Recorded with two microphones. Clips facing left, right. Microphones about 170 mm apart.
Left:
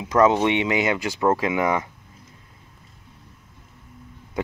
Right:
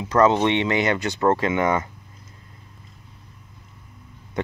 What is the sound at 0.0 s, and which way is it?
Speech, 10° left (ahead or behind).